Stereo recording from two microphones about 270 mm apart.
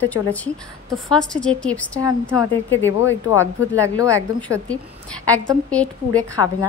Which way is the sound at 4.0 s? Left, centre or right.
Centre.